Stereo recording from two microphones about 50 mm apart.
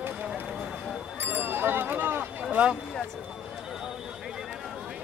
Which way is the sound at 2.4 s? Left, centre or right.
Right.